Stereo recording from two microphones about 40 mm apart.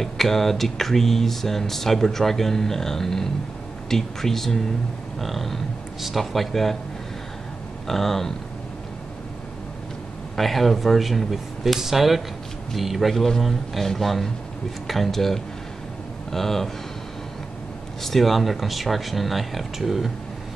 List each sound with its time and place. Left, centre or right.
0.0 s speech: centre
7.8 s speech: centre
10.3 s speech: centre
18.0 s speech: centre